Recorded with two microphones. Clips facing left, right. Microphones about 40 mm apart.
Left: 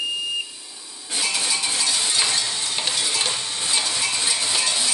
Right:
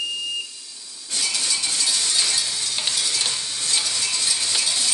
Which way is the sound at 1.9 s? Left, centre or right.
Centre.